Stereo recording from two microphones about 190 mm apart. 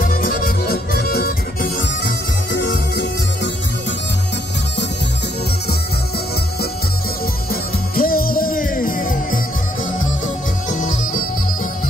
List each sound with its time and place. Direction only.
0.0 s music: 45° left (ahead or behind); by 3.1 s 70° left (ahead or behind)
7.9 s music: 50° left (ahead or behind)
10.7 s music: 45° left (ahead or behind)